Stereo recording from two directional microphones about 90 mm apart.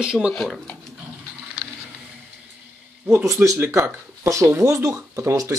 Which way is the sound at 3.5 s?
25° right (ahead or behind).